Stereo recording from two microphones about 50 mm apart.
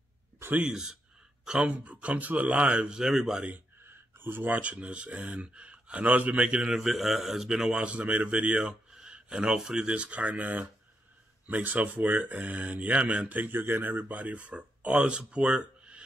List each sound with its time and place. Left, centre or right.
0.7 s speech: centre
1.6 s speech: right
3.0 s speech: centre
3.3 s speech: right
3.8 s speech: right
6.7 s speech: centre; by 16.0 s right